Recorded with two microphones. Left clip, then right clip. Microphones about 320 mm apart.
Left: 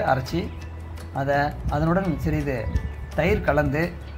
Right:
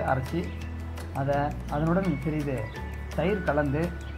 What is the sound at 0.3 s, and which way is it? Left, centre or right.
Speech, left.